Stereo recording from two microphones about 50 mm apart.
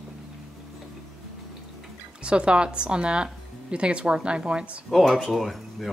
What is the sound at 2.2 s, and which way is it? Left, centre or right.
Speech, right.